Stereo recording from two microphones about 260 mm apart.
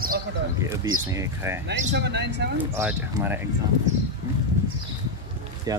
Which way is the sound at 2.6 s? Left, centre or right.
Centre.